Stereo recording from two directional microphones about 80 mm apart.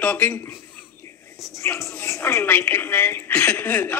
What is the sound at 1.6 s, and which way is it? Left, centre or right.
A woman's voice, left.